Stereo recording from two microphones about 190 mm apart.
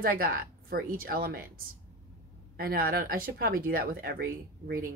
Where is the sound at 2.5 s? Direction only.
50° right (ahead or behind).